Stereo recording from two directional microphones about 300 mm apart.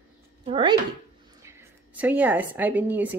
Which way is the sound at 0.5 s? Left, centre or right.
Centre.